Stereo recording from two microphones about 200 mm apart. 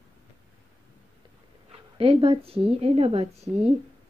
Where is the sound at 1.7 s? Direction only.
30° right (ahead or behind).